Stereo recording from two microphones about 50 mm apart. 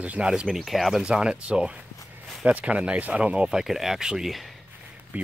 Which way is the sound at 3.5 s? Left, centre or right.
Centre.